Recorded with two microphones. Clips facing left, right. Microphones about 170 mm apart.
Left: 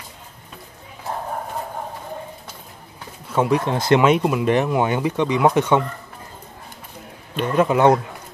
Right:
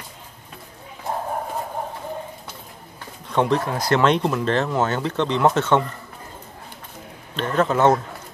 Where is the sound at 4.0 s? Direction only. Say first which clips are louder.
Left 2 dB; 10° left (ahead or behind).